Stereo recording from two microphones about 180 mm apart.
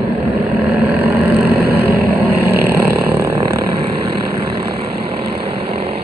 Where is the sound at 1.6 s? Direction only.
60° right (ahead or behind).